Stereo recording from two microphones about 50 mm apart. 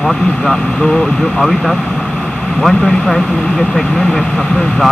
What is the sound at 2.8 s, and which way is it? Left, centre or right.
Speech, centre.